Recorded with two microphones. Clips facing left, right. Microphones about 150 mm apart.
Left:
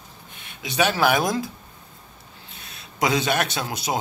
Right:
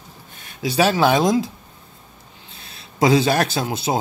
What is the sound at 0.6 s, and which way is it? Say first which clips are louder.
Speech: right 4 dB; 35° right (ahead or behind).